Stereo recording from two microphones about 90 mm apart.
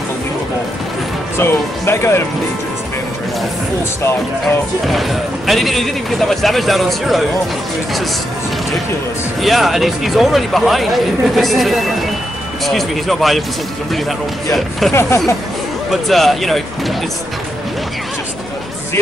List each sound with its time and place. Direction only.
1.4 s speech: 25° left (ahead or behind)
4.8 s speech: centre (ahead or behind)
9.4 s speech: centre (ahead or behind)
14.9 s speech: 30° left (ahead or behind)
15.9 s speech: centre (ahead or behind)